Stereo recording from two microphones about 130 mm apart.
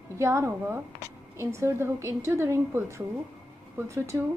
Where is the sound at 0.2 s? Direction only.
20° right (ahead or behind).